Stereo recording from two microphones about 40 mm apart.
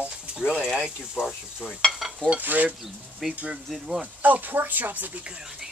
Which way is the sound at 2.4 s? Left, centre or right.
Right.